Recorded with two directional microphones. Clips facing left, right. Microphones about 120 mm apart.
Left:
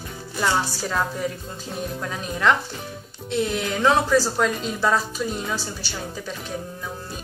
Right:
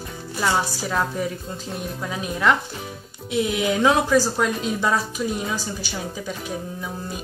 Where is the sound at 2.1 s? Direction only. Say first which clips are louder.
Right 1 dB; 5° right (ahead or behind).